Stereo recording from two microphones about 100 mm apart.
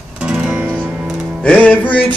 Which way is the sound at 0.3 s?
10° right (ahead or behind).